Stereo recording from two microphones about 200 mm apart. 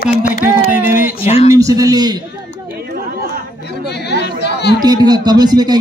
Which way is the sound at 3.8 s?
55° left (ahead or behind).